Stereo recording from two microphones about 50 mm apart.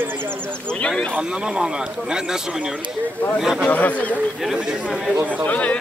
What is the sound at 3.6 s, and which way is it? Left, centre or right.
Speech, left.